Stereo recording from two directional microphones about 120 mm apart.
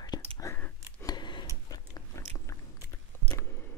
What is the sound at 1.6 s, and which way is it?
Biting, 30° left (ahead or behind).